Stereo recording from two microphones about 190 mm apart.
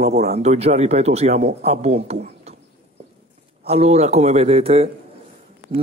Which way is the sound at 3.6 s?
35° right (ahead or behind).